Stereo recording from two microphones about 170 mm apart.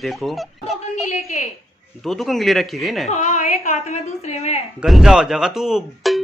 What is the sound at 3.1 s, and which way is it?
A woman's voice, 45° left (ahead or behind).